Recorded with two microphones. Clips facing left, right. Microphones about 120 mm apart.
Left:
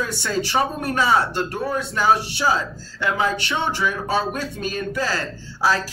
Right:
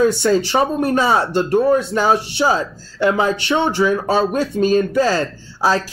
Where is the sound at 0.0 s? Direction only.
25° right (ahead or behind).